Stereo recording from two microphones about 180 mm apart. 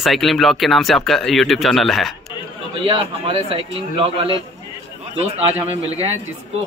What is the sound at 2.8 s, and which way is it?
A man's voice, 30° right (ahead or behind).